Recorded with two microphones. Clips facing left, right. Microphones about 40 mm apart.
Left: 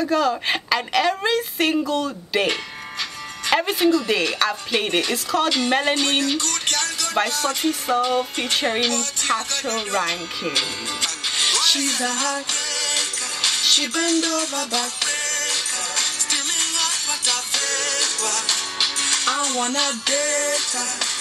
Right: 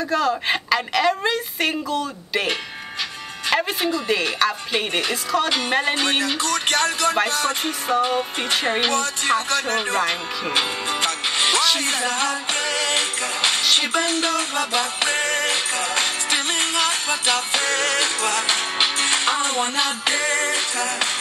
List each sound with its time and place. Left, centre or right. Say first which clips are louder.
0.0 s a woman's voice: left 1 dB; centre
5.9 s a sound: even; centre
6.7 s music: right 7 dB; right
8.0 s a sound: even; centre
8.7 s speech: right 2 dB; right
11.0 s music: right 2 dB; right